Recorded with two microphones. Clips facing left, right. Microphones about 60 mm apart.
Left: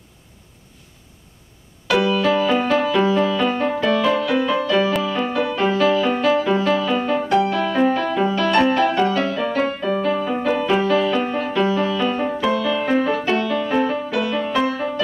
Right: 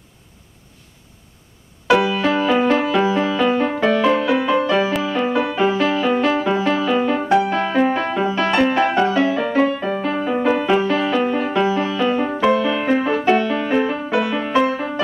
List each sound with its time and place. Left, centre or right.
1.9 s music: centre
4.0 s music: right
12.4 s music: right